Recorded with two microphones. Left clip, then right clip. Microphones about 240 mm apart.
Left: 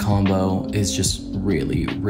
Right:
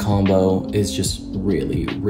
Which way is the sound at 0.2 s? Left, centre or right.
Centre.